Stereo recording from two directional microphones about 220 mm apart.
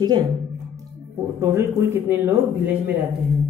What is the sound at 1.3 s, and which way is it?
Speech, 10° right (ahead or behind).